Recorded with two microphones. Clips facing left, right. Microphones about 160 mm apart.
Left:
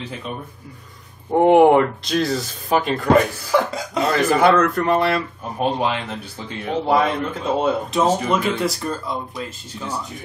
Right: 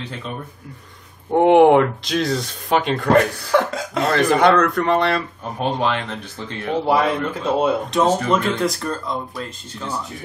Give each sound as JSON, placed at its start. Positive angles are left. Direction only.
{"t": 1.3, "sound": "speech", "side_deg": 0}
{"t": 6.9, "sound": "speech", "side_deg": 0}